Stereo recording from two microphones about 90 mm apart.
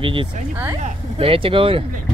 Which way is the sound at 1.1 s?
90° right.